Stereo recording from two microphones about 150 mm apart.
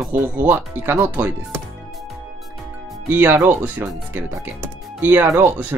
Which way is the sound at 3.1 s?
10° right (ahead or behind).